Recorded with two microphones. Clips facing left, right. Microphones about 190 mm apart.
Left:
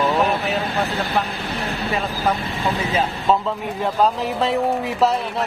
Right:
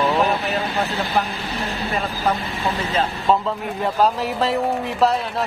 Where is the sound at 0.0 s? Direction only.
Centre (ahead or behind).